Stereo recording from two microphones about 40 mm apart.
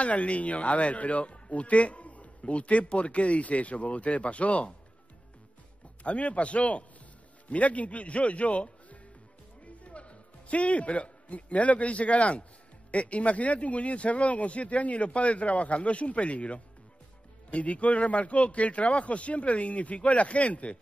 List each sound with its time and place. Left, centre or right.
0.0 s speech: left
6.0 s a man's voice: left